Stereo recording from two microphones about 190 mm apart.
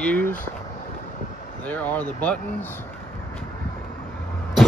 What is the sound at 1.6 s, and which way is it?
Speech, 10° left (ahead or behind).